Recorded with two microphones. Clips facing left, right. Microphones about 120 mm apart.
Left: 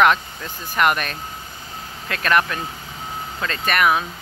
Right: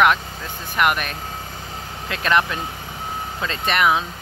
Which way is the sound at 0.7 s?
10° right (ahead or behind).